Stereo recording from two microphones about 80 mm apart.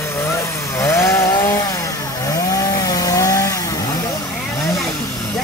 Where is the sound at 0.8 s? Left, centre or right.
Left.